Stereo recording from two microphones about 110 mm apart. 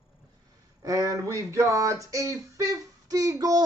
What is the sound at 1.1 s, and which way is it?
Speech, 30° right (ahead or behind).